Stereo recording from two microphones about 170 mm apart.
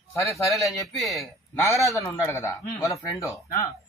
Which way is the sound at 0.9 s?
Centre (ahead or behind).